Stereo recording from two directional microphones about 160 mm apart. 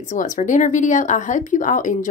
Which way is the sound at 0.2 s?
50° left (ahead or behind).